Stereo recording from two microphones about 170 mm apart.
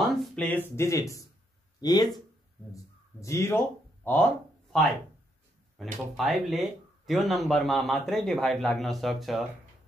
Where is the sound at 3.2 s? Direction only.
15° left (ahead or behind).